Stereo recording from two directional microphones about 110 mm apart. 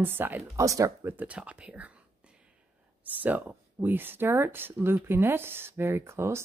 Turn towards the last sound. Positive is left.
turn(degrees=-25)  # may be behind; listen again after turning